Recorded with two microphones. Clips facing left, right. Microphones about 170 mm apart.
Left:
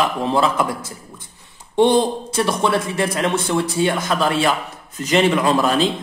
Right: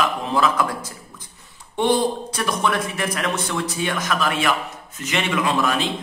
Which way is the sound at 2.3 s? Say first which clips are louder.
Left 4 dB; 30° left (ahead or behind).